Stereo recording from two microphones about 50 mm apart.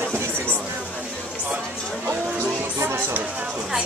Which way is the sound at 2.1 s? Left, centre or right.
Right.